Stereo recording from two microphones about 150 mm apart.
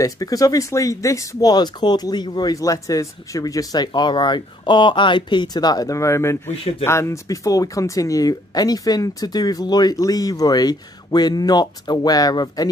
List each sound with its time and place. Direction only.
0.0 s speech: 25° left (ahead or behind)